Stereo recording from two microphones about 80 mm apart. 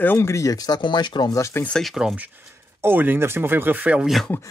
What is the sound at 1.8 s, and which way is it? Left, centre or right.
Speech, centre.